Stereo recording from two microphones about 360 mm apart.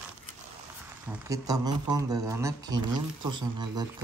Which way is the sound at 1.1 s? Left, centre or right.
Centre.